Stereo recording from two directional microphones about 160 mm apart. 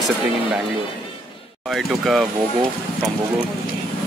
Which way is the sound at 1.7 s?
Centre (ahead or behind).